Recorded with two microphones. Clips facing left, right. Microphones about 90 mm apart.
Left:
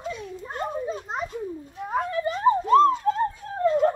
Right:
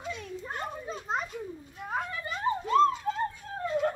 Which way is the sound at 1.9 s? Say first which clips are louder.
Left 8 dB; 40° left (ahead or behind).